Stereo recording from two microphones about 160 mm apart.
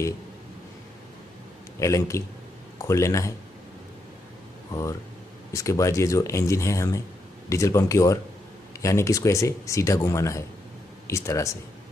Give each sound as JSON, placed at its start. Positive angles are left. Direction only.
{"t": 1.8, "sound": "speech", "side_deg": 20}
{"t": 4.7, "sound": "speech", "side_deg": 20}